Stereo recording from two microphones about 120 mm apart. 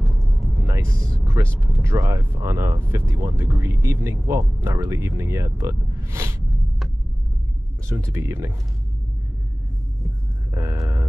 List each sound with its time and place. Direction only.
0.0 s music: centre (ahead or behind)
0.6 s vehicle: 25° right (ahead or behind)
1.8 s speech: 25° right (ahead or behind)
7.9 s speech: 25° right (ahead or behind)
10.5 s a sound: 25° right (ahead or behind)